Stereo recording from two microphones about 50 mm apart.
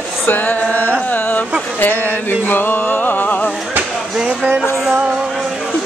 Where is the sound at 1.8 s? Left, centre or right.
Left.